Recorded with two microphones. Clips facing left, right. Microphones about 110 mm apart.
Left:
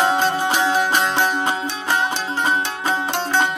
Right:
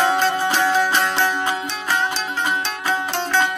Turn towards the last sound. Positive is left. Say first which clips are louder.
# even
turn(degrees=20)  # may be behind; listen again after turning